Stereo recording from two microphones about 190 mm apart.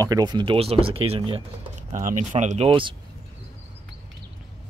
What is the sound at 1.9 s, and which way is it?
Speech, 45° right (ahead or behind).